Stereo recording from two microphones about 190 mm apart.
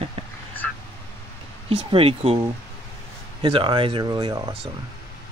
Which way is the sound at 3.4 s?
25° right (ahead or behind).